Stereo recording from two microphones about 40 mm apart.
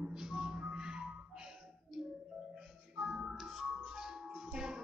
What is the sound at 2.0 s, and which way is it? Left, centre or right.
Music, centre.